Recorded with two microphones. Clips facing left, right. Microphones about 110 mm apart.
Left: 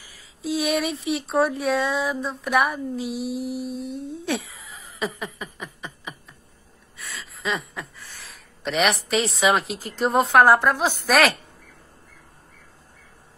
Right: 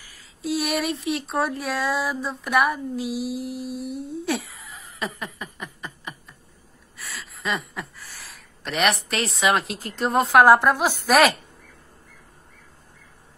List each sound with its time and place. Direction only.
0.4 s speech: centre (ahead or behind)
10.4 s a woman's voice: 15° right (ahead or behind)